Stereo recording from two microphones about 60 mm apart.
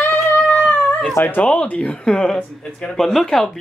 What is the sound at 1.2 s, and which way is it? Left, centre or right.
A woman's voice, left.